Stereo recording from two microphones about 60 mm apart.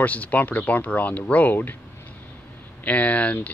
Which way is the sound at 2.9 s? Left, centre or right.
Left.